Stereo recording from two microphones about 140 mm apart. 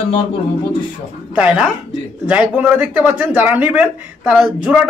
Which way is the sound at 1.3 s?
10° right (ahead or behind).